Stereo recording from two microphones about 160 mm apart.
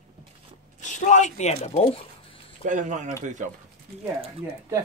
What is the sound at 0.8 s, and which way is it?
Speech, 50° left (ahead or behind).